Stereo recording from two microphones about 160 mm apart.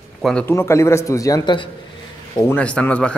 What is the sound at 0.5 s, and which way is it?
Speech, 15° left (ahead or behind).